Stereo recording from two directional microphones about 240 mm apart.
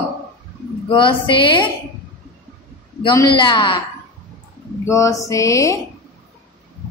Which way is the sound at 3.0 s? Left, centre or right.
Centre.